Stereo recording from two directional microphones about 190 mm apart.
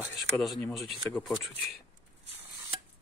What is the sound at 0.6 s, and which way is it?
Speech, 5° left (ahead or behind).